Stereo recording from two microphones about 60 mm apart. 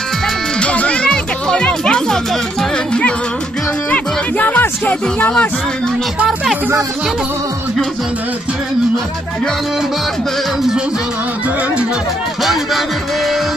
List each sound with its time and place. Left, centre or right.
0.6 s music: left
3.9 s music: left